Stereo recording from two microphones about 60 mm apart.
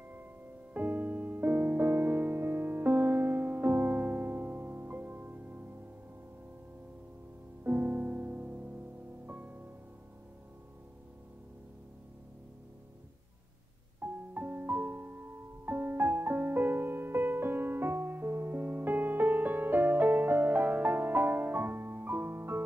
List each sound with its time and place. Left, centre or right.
0.7 s music: right
7.6 s music: right
14.3 s music: right